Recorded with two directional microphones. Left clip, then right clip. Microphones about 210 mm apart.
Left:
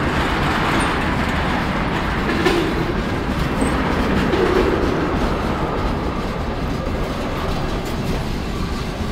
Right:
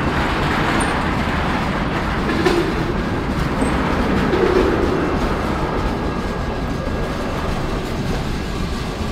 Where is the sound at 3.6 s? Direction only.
45° left (ahead or behind).